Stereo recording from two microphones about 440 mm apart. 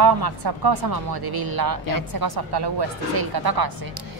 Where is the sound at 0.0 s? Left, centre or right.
Right.